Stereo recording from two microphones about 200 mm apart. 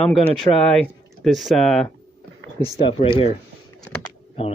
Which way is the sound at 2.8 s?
25° left (ahead or behind).